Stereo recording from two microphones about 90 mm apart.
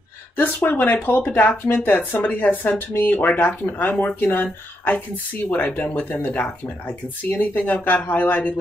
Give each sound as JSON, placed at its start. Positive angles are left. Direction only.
{"t": 0.4, "sound": "speech", "side_deg": 20}